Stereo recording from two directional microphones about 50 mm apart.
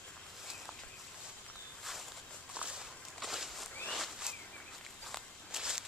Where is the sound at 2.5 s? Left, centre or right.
Centre.